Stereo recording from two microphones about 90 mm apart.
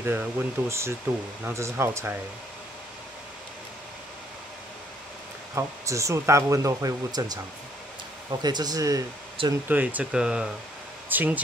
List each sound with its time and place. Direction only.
0.0 s speech: 25° right (ahead or behind)
5.5 s speech: 35° right (ahead or behind)
8.4 s speech: 50° right (ahead or behind)
9.7 s speech: 20° right (ahead or behind)
10.1 s speech: 10° right (ahead or behind)
11.1 s speech: 20° right (ahead or behind)